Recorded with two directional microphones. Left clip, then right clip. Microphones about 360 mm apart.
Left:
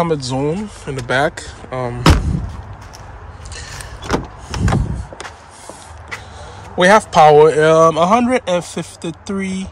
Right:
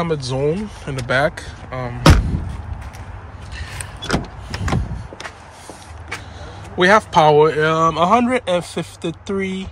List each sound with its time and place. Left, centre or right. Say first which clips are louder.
0.0 s speech: left 2 dB; centre
4.1 s vehicle: left 3 dB; left
6.8 s speech: left 3 dB; centre